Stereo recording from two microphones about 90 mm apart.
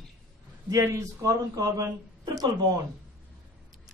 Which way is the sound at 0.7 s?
35° right (ahead or behind).